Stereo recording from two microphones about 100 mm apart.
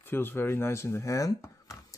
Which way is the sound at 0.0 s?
20° left (ahead or behind).